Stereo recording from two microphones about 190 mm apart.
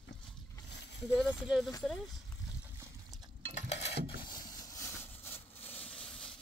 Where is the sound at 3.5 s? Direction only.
35° left (ahead or behind).